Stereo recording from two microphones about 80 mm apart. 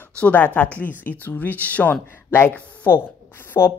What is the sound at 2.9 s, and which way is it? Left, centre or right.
Speech, left.